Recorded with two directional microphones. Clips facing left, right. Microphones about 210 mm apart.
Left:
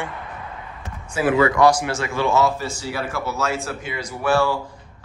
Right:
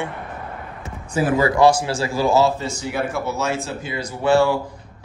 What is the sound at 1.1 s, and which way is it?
A man's voice, 40° right (ahead or behind).